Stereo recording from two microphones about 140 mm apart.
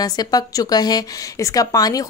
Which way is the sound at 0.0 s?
30° left (ahead or behind).